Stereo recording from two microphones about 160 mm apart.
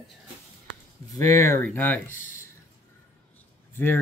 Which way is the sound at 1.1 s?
20° left (ahead or behind).